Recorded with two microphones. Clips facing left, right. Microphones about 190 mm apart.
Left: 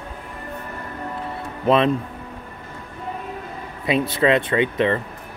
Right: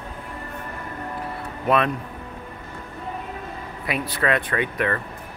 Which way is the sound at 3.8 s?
25° left (ahead or behind).